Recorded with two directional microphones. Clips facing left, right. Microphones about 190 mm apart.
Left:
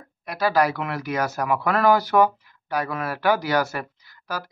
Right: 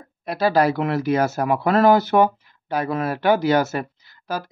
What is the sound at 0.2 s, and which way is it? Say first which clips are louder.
Speech: right 3 dB; 25° right (ahead or behind).